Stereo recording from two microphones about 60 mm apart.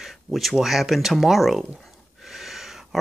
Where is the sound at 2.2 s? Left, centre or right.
Centre.